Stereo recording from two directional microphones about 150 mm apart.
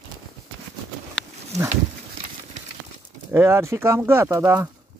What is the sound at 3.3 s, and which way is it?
Speech, 15° right (ahead or behind).